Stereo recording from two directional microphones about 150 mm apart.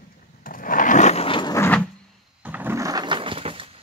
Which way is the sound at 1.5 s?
10° left (ahead or behind).